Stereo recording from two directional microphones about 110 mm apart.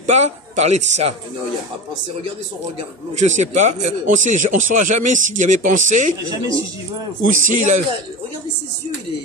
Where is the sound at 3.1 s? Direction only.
90° right.